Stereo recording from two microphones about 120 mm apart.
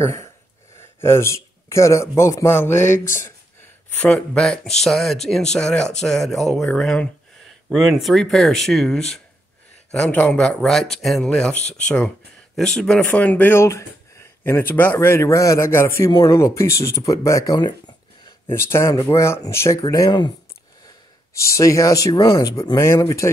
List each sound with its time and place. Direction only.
0.0 s speech: 25° left (ahead or behind)
4.3 s a man's voice: 5° left (ahead or behind); by 17.6 s 25° left (ahead or behind)
17.6 s a sound: 40° left (ahead or behind)
18.5 s a man's voice: 20° left (ahead or behind)
19.8 s speech: 35° left (ahead or behind)
21.3 s a man's voice: 25° left (ahead or behind)